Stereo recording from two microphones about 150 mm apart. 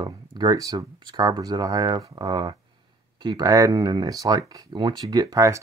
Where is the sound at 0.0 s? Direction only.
25° right (ahead or behind).